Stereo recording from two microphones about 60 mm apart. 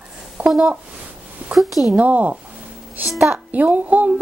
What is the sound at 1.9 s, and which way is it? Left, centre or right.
A woman's voice, right.